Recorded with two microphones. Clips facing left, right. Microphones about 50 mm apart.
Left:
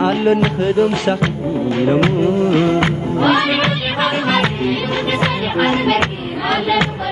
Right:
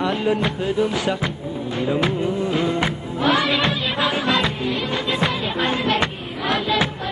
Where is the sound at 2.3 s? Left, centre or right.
Left.